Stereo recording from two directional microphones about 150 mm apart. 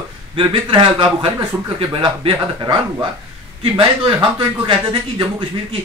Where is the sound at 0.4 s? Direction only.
35° right (ahead or behind).